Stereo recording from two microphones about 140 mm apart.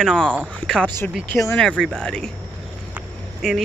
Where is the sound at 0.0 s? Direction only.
5° left (ahead or behind).